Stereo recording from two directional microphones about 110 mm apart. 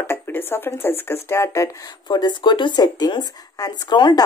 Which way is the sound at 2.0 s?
40° left (ahead or behind).